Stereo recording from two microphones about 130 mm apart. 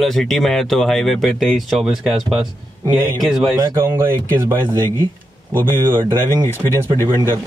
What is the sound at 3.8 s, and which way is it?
Speech, 20° right (ahead or behind).